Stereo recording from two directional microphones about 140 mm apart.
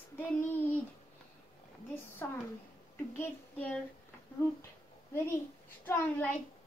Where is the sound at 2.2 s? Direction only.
15° left (ahead or behind).